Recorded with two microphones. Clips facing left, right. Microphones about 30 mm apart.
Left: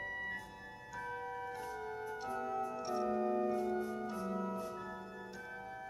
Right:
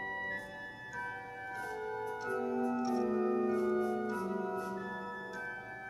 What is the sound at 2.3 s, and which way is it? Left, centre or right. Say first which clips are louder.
Organ: right 5 dB; centre.